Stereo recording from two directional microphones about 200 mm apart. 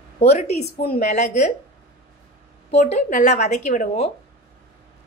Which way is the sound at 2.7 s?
35° left (ahead or behind).